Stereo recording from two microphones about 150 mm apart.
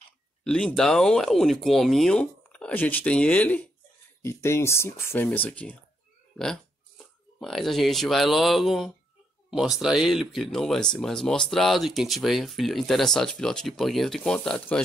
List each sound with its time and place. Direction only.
0.4 s speech: 5° left (ahead or behind)